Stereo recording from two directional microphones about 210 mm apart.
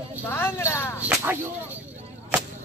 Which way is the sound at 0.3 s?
10° left (ahead or behind).